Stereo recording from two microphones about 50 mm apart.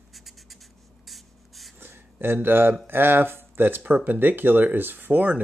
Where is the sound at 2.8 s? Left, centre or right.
Right.